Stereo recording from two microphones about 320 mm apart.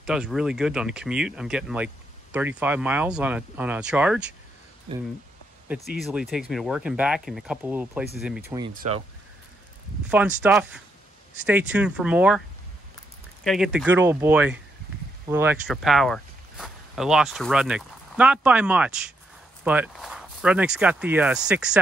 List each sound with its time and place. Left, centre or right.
0.0 s speech: centre
4.9 s speech: centre
5.9 s speech: centre; by 9.0 s right
10.0 s speech: centre
13.4 s speech: centre